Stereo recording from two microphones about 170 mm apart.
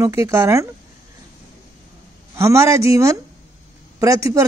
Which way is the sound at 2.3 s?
15° right (ahead or behind).